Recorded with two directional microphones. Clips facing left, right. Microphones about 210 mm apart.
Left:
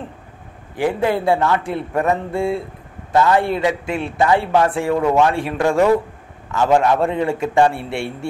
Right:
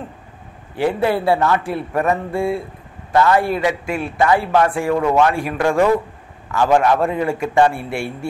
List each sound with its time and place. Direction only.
0.7 s a man's voice: 15° left (ahead or behind)
4.9 s speech: 5° left (ahead or behind)
5.2 s a man's voice: 25° left (ahead or behind)